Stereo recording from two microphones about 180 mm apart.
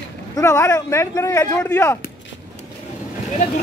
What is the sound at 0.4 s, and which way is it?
Speech, 15° left (ahead or behind).